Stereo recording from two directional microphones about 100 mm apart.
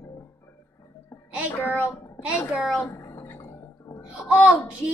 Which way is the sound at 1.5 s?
20° left (ahead or behind).